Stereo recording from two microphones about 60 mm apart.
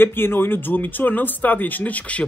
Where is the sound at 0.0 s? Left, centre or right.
Left.